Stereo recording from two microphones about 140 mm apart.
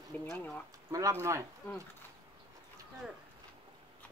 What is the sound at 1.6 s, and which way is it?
Speech, 20° left (ahead or behind).